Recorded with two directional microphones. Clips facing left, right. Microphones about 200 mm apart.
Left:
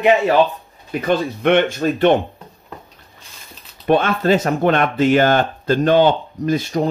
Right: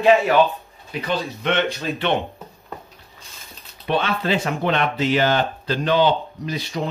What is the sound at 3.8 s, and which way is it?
Speech, 50° left (ahead or behind).